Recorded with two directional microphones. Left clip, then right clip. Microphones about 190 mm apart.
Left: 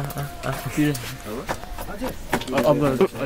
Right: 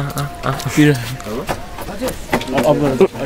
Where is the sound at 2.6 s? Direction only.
45° left (ahead or behind).